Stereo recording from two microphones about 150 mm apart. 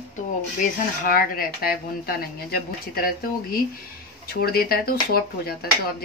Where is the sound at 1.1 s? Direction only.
75° left (ahead or behind).